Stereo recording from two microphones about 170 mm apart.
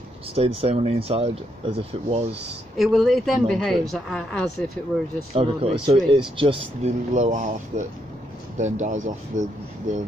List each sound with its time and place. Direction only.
0.3 s speech: 35° right (ahead or behind)
2.8 s speech: centre (ahead or behind)
5.3 s speech: 35° right (ahead or behind)